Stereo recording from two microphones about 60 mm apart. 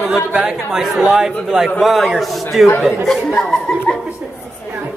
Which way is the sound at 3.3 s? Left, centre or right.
Centre.